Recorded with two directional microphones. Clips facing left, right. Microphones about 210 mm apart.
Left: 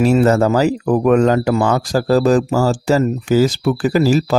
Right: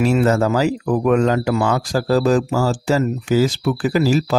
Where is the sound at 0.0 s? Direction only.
40° left (ahead or behind).